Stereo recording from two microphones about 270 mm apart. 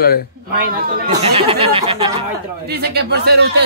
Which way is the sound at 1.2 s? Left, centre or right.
Right.